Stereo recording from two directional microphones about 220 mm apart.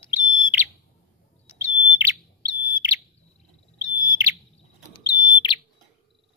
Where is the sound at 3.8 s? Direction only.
15° right (ahead or behind).